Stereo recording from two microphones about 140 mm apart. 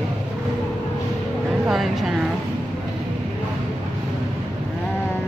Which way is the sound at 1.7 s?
Centre (ahead or behind).